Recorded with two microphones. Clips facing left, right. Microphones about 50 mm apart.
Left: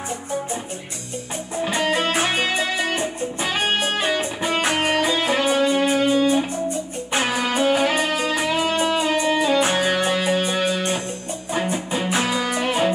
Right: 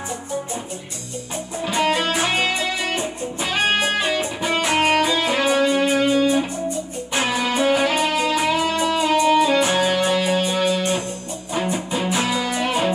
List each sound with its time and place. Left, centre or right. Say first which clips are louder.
1.9 s music: even; left